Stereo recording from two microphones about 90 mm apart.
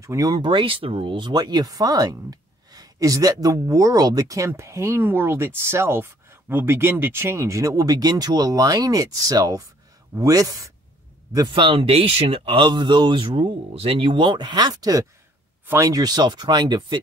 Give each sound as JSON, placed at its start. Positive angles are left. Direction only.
{"t": 0.0, "sound": "speech", "side_deg": -40}
{"t": 0.4, "sound": "speech", "side_deg": -70}
{"t": 11.3, "sound": "speech", "side_deg": -65}